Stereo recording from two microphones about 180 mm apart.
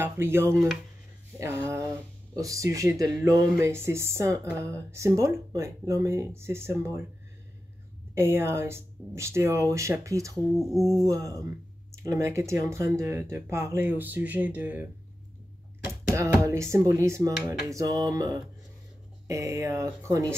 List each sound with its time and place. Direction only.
0.0 s speech: 15° right (ahead or behind)
2.3 s speech: 20° right (ahead or behind)
8.1 s speech: 15° right (ahead or behind)
10.3 s speech: centre (ahead or behind)
11.1 s speech: 20° right (ahead or behind)
15.9 s speech: 15° right (ahead or behind)